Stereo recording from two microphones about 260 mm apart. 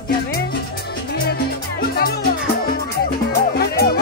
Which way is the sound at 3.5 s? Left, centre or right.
Left.